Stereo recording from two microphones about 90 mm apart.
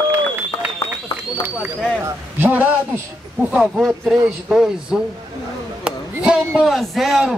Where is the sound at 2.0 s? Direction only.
25° right (ahead or behind).